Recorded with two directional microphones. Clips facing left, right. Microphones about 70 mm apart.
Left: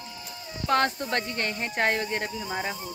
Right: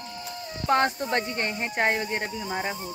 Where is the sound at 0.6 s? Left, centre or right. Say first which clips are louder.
Right 1 dB; centre.